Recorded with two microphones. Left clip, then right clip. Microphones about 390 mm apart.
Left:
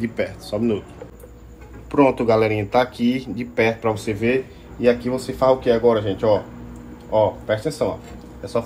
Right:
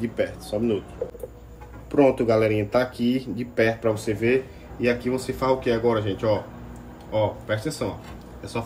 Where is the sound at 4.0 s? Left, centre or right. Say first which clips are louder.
Left 2 dB; left.